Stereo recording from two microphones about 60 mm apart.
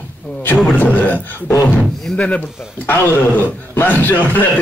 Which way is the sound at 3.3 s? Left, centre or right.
Left.